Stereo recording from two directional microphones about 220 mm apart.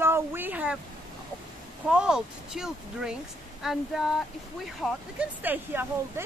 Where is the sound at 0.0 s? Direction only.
10° right (ahead or behind).